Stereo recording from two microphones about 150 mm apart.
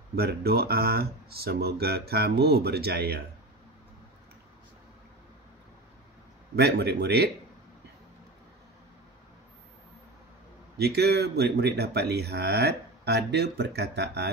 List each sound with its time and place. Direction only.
0.1 s speech: 90° right
6.5 s speech: 90° right
10.8 s speech: 90° right